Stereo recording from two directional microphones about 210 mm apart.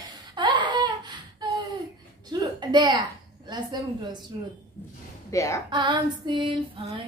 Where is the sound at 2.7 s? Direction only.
20° right (ahead or behind).